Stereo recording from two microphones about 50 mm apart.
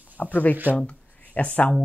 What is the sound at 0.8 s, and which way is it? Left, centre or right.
Speech, left.